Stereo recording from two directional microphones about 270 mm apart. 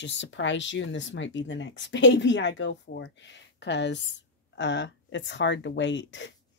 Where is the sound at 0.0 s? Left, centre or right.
Left.